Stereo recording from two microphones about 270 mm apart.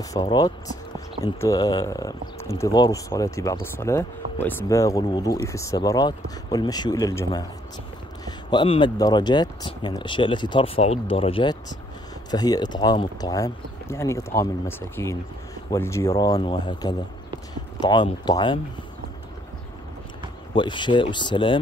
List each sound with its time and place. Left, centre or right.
0.1 s speech: centre
20.5 s speech: centre